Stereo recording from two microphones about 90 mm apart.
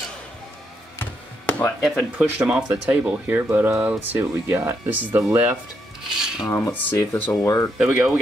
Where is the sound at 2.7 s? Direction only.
20° right (ahead or behind).